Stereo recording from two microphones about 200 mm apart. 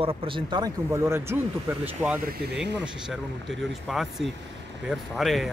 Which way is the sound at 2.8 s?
Centre (ahead or behind).